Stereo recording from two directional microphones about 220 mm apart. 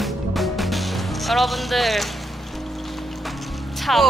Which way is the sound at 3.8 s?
Centre (ahead or behind).